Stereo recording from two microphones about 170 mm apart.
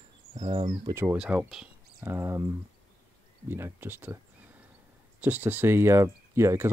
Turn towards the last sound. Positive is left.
turn(degrees=-15)  # may be behind; listen again after turning